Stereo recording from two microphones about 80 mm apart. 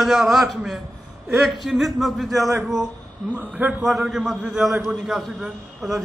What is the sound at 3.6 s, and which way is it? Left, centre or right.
Speech, centre.